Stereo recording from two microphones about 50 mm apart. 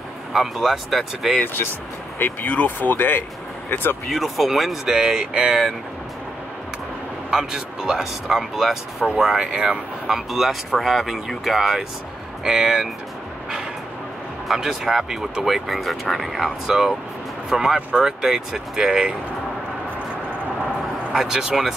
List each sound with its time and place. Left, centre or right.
0.3 s speech: centre
2.1 s speech: left
4.1 s speech: centre
7.2 s speech: centre
14.5 s speech: centre
21.1 s speech: centre